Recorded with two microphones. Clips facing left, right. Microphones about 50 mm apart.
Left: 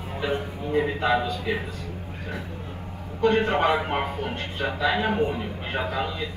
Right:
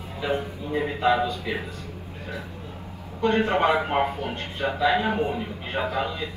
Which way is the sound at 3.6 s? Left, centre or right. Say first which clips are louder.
Right 1 dB; right.